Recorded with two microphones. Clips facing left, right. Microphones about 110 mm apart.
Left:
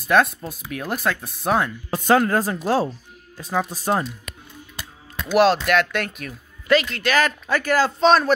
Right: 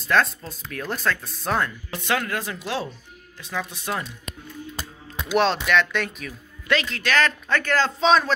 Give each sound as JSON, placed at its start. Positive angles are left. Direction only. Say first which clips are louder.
{"t": 0.1, "sound": "speech", "louder": "left 3 dB", "side_deg": 10}
{"t": 2.0, "sound": "speech", "louder": "left 8 dB", "side_deg": 35}
{"t": 5.3, "sound": "speech", "louder": "left 4 dB", "side_deg": 5}